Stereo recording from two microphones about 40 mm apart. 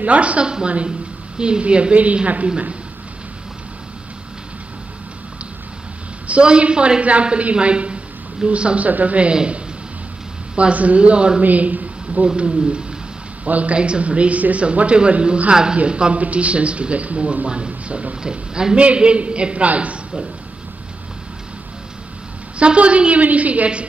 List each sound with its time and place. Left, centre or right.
0.0 s a woman's voice: right
6.2 s a woman's voice: right
9.3 s speech: right
10.5 s speech: right
11.4 s a woman's voice: right
12.4 s a woman's voice: right
15.5 s a woman's voice: centre
22.6 s a woman's voice: right